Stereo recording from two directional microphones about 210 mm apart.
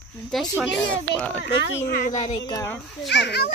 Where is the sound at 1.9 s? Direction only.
40° left (ahead or behind).